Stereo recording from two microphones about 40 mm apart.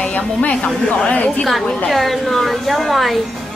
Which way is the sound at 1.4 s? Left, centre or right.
Centre.